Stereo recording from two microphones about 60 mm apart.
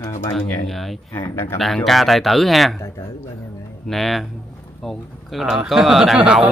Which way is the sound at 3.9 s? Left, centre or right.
Centre.